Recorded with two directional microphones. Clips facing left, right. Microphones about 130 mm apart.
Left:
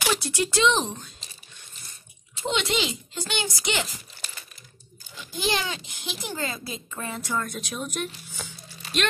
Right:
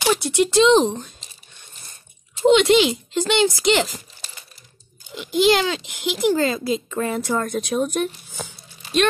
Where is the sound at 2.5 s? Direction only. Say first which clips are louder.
Right 11 dB; 80° right.